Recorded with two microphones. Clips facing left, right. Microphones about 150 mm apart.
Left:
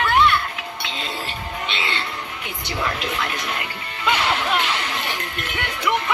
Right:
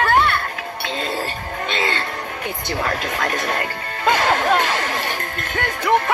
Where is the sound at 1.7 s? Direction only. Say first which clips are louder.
Right 6 dB; 45° right (ahead or behind).